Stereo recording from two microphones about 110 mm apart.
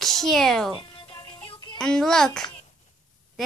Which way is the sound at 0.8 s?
45° left (ahead or behind).